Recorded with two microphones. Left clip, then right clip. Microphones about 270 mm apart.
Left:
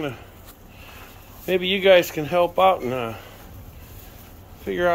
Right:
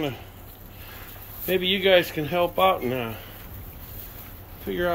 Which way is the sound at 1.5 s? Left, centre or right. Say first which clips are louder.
Left 3 dB; centre.